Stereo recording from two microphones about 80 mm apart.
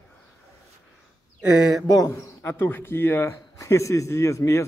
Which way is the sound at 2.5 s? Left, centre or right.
Left.